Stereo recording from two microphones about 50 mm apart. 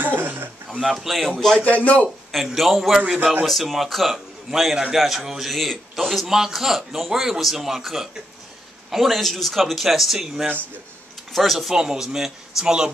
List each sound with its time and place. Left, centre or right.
0.0 s a sound: right
0.9 s a man's voice: centre
1.6 s a man's voice: left
2.3 s a man's voice: centre
11.7 s a man's voice: centre